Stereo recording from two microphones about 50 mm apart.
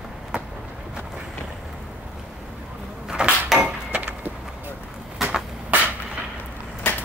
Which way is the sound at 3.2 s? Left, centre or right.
Centre.